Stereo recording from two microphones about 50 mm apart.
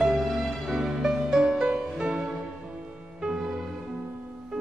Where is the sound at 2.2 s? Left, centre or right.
Right.